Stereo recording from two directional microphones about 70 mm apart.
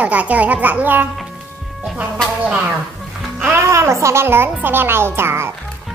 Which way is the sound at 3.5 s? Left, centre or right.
Right.